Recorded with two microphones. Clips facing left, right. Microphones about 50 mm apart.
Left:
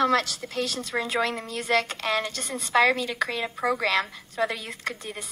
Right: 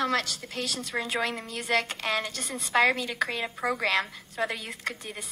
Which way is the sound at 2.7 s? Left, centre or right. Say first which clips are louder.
Left 2 dB; right.